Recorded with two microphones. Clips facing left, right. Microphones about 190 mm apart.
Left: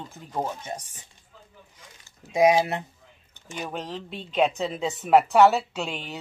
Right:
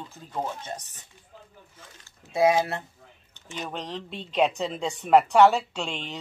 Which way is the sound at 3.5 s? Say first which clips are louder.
Left 1 dB; 5° left (ahead or behind).